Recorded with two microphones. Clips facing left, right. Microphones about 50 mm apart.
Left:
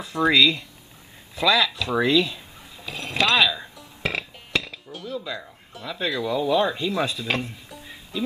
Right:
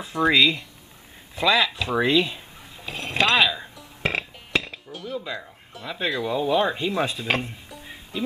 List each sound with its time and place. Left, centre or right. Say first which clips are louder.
0.3 s speech: left 1 dB; centre
1.3 s a sound: even; centre
4.0 s music: right 2 dB; centre
4.8 s dishes: even; centre
5.1 s speech: even; centre
5.4 s a sound: even; centre
5.9 s speech: even; centre
7.8 s music: even; centre